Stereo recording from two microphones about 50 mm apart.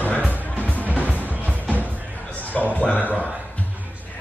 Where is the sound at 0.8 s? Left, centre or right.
Right.